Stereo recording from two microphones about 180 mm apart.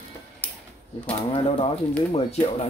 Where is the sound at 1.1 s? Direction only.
30° left (ahead or behind).